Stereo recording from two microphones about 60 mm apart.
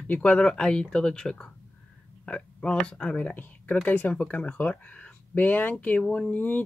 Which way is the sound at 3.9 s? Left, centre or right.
Left.